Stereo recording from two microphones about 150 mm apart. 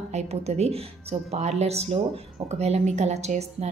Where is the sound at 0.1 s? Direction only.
45° right (ahead or behind).